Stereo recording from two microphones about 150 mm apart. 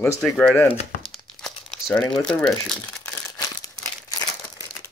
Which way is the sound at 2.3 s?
5° left (ahead or behind).